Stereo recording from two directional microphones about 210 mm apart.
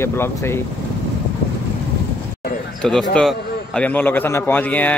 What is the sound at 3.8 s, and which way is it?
Speech, 10° left (ahead or behind).